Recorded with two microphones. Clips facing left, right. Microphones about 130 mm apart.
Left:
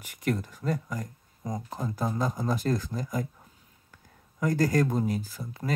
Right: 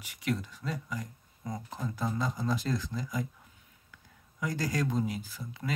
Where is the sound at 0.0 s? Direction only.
50° left (ahead or behind).